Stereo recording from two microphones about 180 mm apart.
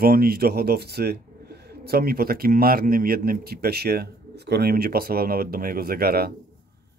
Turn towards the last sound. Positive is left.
turn(degrees=-60)  # may be behind; listen again after turning